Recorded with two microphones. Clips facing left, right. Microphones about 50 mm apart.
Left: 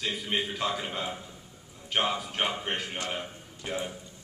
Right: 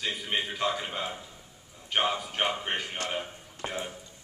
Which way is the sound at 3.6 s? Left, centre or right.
Right.